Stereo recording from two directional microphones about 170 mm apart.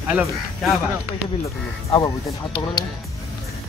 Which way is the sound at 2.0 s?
30° left (ahead or behind).